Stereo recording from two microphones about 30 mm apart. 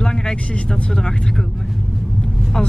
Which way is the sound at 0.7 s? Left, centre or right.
Left.